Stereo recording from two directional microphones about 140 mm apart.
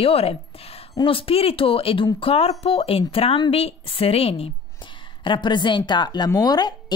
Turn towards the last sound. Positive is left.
turn(degrees=30)  # may be behind; listen again after turning